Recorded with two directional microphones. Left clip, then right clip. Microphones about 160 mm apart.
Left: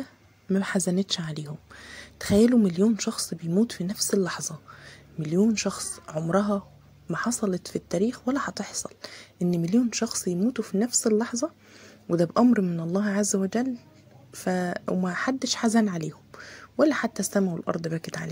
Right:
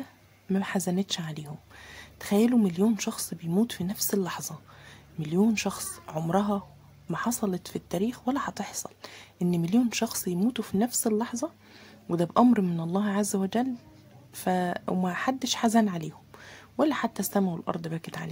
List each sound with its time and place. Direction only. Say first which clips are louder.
0.6 s speech: left 3 dB; 15° left (ahead or behind)
11.8 s a sound: left 4 dB; 5° left (ahead or behind)
12.4 s speech: left 1 dB; 5° right (ahead or behind)
12.8 s speech: left 2 dB; 10° left (ahead or behind)